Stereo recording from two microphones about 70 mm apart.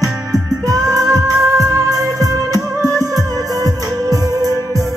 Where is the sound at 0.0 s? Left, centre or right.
Right.